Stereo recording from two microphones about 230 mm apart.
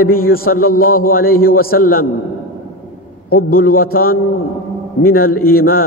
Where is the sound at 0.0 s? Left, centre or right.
Left.